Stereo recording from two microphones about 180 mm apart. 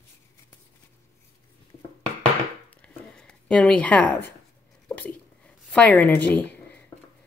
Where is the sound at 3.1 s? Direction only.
5° left (ahead or behind).